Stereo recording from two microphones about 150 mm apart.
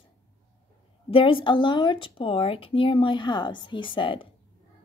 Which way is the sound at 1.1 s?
35° left (ahead or behind).